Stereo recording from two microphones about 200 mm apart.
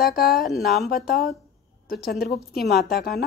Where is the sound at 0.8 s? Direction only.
50° left (ahead or behind).